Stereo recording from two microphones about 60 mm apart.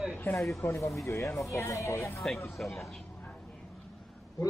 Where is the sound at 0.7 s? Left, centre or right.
Left.